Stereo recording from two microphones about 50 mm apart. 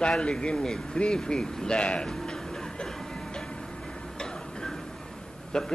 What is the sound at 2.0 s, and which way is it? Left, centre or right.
Music, centre.